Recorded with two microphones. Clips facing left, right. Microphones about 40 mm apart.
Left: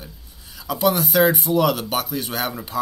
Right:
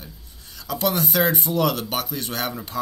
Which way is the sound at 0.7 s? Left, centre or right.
Centre.